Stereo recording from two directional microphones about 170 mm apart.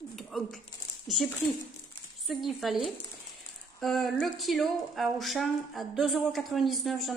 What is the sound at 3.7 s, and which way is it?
Speech, centre (ahead or behind).